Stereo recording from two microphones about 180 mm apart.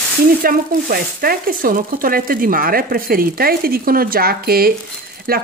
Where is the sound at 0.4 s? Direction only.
55° right (ahead or behind).